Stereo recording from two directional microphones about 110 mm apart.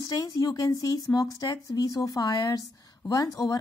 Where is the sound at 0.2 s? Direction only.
35° left (ahead or behind).